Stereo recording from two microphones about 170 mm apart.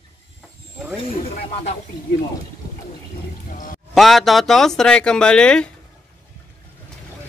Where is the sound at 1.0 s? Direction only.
35° left (ahead or behind).